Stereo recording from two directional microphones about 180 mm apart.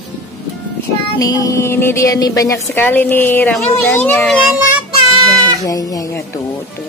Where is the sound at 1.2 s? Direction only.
20° left (ahead or behind).